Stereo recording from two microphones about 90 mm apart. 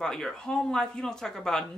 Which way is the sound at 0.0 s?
5° left (ahead or behind).